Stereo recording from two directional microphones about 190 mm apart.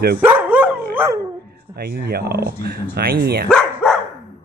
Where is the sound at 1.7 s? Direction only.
55° right (ahead or behind).